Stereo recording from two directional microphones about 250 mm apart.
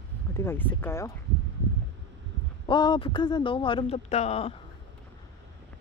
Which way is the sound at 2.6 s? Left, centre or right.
Centre.